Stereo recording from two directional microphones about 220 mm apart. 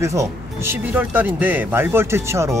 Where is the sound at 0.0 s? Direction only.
15° right (ahead or behind).